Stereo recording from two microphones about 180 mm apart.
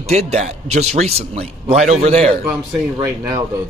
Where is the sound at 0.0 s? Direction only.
35° right (ahead or behind).